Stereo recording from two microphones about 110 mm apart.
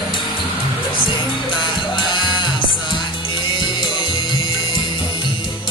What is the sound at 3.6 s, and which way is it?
Music, 45° left (ahead or behind).